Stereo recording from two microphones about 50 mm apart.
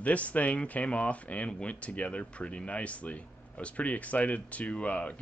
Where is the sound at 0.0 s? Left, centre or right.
Left.